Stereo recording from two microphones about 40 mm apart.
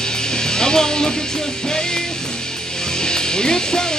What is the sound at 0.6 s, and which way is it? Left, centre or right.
Music, centre.